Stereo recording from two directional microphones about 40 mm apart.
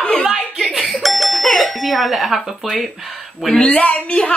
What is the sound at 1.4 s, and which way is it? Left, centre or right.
Doorbell, centre.